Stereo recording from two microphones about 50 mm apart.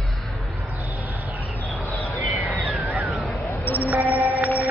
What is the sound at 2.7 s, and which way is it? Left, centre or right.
Cat, right.